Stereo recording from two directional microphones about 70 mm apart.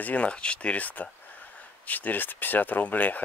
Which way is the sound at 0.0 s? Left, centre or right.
Centre.